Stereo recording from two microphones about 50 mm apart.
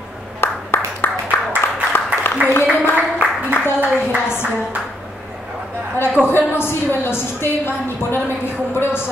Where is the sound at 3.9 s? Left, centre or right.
Left.